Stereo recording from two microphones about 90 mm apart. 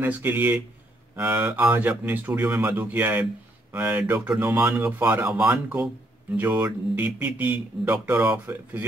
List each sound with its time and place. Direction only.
0.0 s speech: 20° right (ahead or behind)